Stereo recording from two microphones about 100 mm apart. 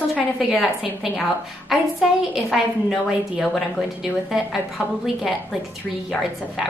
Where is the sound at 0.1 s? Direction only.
5° right (ahead or behind).